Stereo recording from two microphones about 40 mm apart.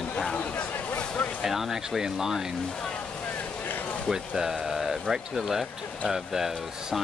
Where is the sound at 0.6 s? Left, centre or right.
Left.